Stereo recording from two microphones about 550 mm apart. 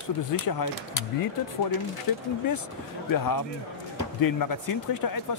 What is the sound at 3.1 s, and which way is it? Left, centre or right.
Speech, left.